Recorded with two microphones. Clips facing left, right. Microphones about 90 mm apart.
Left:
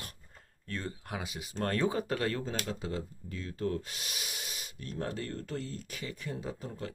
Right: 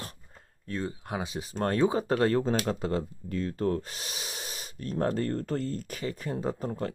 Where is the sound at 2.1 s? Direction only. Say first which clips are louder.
Right 8 dB; 35° right (ahead or behind).